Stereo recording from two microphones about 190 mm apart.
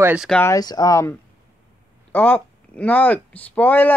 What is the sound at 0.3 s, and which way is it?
Speech, 15° left (ahead or behind).